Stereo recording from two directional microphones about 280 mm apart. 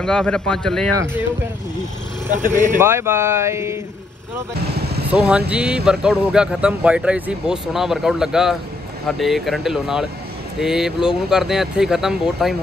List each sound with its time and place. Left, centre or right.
0.0 s a man's voice: centre
0.9 s speech: centre
2.3 s speech: right
2.8 s speech: centre
4.6 s vehicle: right
5.0 s a man's voice: centre